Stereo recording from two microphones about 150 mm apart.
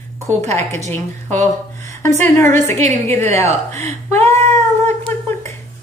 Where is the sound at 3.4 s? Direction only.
45° right (ahead or behind).